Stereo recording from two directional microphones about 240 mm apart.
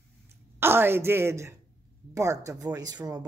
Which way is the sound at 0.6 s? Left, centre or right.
Centre.